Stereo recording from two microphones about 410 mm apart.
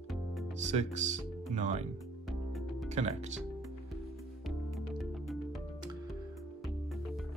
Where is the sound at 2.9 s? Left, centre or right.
Centre.